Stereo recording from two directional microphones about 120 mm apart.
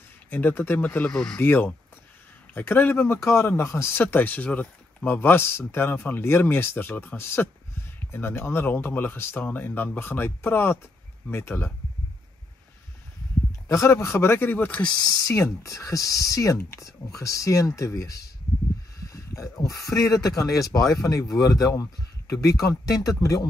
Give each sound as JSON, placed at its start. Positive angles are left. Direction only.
{"t": 0.3, "sound": "speech", "side_deg": 15}
{"t": 13.7, "sound": "speech", "side_deg": 25}
{"t": 15.0, "sound": "speech", "side_deg": 25}
{"t": 19.0, "sound": "a sound", "side_deg": 25}
{"t": 20.6, "sound": "speech", "side_deg": 30}